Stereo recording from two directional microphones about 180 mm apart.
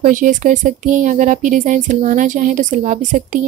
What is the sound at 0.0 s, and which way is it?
A woman's voice, 45° right (ahead or behind).